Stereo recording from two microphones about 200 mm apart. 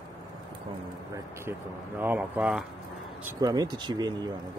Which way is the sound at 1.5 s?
10° right (ahead or behind).